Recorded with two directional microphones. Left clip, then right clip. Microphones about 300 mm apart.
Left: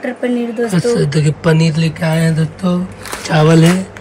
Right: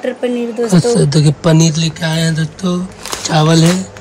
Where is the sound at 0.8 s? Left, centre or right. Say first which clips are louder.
Right 2 dB; right.